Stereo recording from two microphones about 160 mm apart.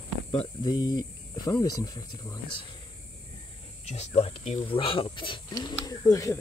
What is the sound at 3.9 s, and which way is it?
Speech, 40° left (ahead or behind).